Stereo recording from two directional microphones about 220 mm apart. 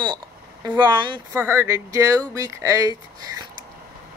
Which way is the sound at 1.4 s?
10° right (ahead or behind).